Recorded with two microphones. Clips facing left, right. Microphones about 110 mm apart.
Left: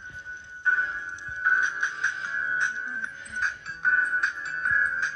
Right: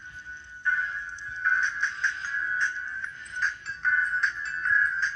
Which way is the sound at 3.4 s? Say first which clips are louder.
Left 1 dB; 50° left (ahead or behind).